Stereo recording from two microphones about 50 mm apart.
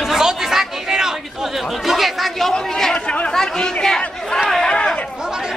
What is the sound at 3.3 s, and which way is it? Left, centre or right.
Speech, centre.